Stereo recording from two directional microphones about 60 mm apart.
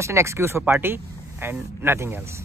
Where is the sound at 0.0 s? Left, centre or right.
Right.